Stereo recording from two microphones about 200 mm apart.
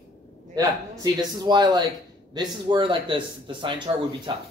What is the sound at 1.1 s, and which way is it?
A man's voice, 20° right (ahead or behind).